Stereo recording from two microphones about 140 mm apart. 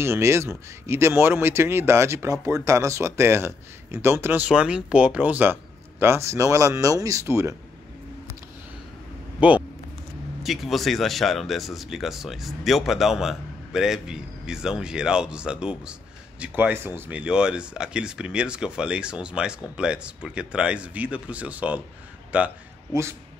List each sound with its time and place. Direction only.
0.0 s speech: 20° right (ahead or behind)
10.4 s speech: centre (ahead or behind)